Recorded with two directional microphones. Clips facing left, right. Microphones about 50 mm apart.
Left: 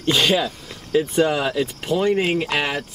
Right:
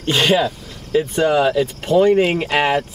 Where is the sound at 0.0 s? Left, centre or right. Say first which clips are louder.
Right 3 dB; centre.